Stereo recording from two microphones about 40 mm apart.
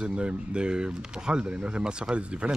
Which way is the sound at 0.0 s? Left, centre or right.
Right.